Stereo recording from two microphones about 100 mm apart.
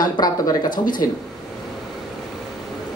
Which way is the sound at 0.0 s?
40° left (ahead or behind).